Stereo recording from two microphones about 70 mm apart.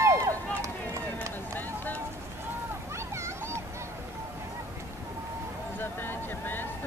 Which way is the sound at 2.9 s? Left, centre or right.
Right.